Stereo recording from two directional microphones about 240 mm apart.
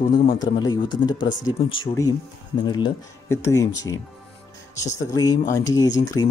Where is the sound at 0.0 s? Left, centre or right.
Left.